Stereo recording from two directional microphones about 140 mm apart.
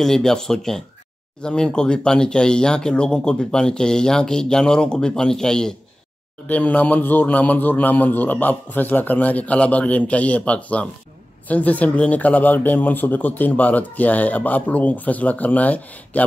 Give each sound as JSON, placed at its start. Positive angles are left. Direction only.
{"t": 0.0, "sound": "a man's voice", "side_deg": 5}